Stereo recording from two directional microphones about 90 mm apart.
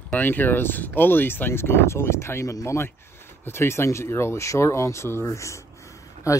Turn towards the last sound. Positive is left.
turn(degrees=35)  # may be behind; listen again after turning